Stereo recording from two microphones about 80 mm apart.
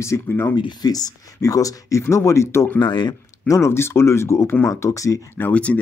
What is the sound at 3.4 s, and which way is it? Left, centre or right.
Speech, left.